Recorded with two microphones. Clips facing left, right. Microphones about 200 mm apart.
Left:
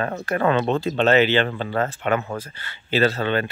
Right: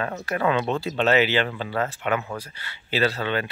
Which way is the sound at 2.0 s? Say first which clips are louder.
Left 3 dB; 40° left (ahead or behind).